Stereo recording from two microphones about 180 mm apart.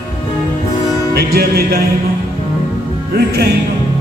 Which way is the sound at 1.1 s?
60° right (ahead or behind).